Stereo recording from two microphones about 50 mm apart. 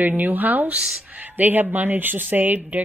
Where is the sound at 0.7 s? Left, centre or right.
Centre.